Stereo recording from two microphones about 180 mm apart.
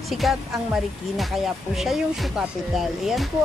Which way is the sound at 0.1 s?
Centre (ahead or behind).